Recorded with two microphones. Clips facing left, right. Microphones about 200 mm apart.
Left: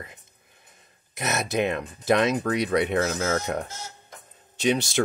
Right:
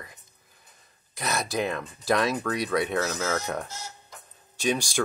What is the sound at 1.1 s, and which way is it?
Speech, 20° left (ahead or behind).